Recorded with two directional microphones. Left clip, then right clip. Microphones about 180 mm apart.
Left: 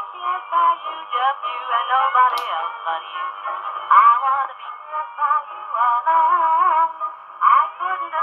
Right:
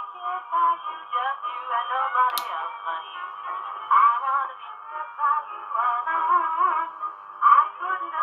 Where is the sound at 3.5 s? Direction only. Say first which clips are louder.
Left 6 dB; 25° left (ahead or behind).